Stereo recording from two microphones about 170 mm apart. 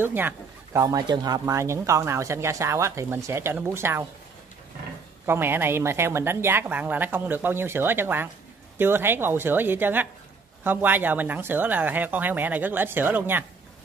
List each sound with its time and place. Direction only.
0.0 s speech: 10° right (ahead or behind)
5.2 s speech: 15° right (ahead or behind)